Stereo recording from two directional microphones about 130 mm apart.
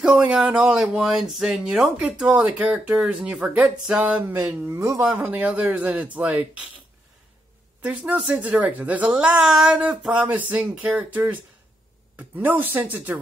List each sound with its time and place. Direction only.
0.0 s speech: 5° right (ahead or behind)
4.6 s speech: 25° right (ahead or behind)
7.8 s speech: 10° right (ahead or behind)